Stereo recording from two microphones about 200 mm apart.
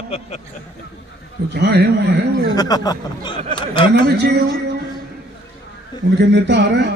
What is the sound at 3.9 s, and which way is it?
Speech, 55° right (ahead or behind).